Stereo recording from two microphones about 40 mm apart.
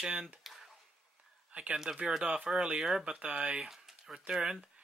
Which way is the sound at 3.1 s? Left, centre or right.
Right.